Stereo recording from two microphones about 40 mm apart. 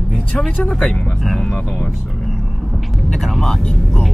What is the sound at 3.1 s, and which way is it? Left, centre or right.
Speech, centre.